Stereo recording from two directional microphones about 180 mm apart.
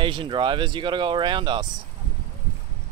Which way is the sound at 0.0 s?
30° right (ahead or behind).